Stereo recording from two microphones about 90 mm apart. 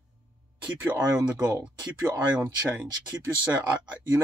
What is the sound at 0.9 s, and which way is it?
Speech, 15° right (ahead or behind).